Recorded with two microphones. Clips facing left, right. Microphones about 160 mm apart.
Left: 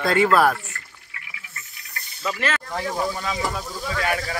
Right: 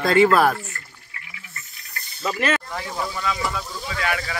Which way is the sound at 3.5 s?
40° left (ahead or behind).